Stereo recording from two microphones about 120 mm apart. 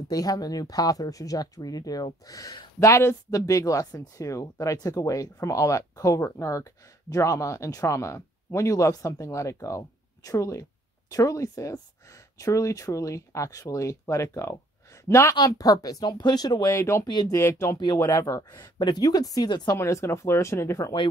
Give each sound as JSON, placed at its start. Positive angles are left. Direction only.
{"t": 0.1, "sound": "speech", "side_deg": 30}
{"t": 16.7, "sound": "speech", "side_deg": 25}
{"t": 17.1, "sound": "speech", "side_deg": 35}
{"t": 17.4, "sound": "speech", "side_deg": 25}
{"t": 19.8, "sound": "speech", "side_deg": 25}